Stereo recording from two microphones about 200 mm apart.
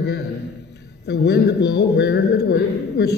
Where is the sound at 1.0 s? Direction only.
55° left (ahead or behind).